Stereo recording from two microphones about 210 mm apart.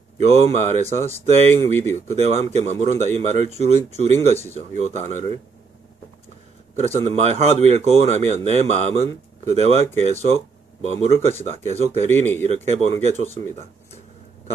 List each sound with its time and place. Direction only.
0.2 s speech: 30° right (ahead or behind)
6.8 s speech: 35° right (ahead or behind)